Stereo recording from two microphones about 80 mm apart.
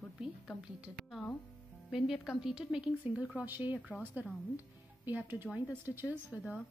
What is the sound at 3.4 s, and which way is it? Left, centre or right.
Speech, right.